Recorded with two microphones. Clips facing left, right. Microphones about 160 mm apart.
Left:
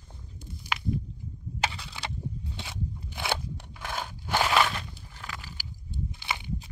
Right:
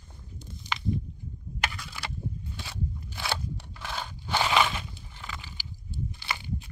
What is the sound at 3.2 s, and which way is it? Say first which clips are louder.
Crunch: left 2 dB; 15° left (ahead or behind).